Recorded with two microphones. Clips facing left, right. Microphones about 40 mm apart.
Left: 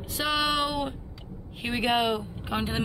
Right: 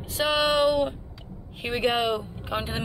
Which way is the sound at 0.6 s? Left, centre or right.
Centre.